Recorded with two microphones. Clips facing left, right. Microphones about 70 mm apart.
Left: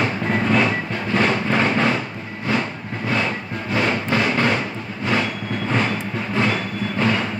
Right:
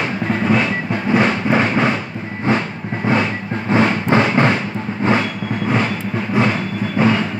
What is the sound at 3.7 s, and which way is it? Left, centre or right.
Music, right.